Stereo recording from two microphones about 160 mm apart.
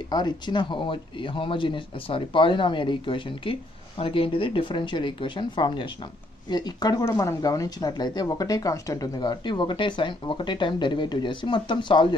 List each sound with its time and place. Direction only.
0.1 s speech: 30° left (ahead or behind)